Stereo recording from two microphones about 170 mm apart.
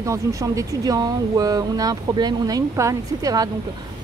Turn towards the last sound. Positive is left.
turn(degrees=-20)  # may be behind; listen again after turning